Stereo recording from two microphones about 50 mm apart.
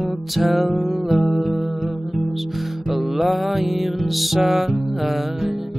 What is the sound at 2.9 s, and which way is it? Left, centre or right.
Music, centre.